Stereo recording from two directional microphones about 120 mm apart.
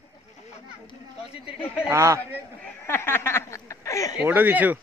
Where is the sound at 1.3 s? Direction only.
50° left (ahead or behind).